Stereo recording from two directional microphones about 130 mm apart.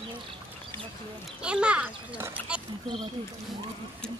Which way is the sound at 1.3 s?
5° right (ahead or behind).